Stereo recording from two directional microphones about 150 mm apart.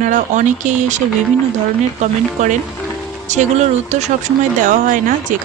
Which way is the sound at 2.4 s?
50° right (ahead or behind).